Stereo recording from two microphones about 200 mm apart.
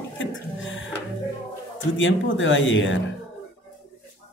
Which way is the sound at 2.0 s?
70° left (ahead or behind).